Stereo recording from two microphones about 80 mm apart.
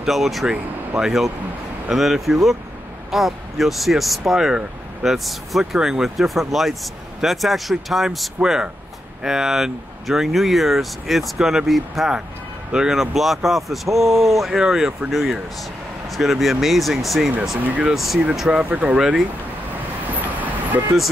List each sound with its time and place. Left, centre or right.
0.0 s speech: centre
17.6 s speech: centre
17.9 s speech: centre
18.6 s speech: centre
20.3 s vehicle: right